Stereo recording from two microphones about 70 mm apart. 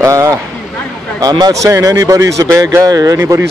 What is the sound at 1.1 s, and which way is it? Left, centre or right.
Speech, right.